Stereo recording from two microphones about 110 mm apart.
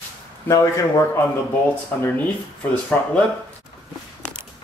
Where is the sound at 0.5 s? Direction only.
25° left (ahead or behind).